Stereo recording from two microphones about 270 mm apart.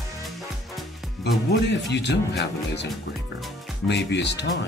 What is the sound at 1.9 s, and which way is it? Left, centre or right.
Speech, left.